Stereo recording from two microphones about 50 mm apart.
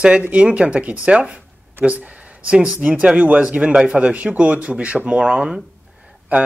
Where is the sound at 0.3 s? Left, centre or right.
Right.